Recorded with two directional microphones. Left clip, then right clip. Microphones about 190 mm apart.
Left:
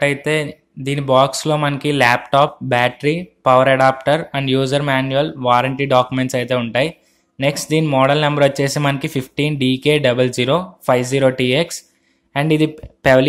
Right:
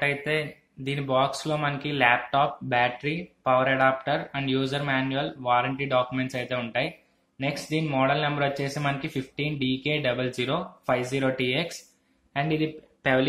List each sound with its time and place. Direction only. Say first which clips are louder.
0.0 s speech: left 9 dB; 50° left (ahead or behind)